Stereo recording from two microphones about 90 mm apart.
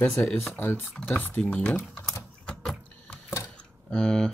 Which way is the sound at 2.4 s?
Centre (ahead or behind).